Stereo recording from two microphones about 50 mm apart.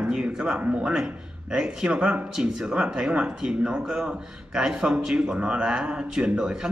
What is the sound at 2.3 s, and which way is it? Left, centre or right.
Speech, centre.